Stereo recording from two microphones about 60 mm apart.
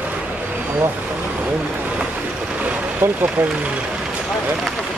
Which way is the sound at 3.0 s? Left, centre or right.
Right.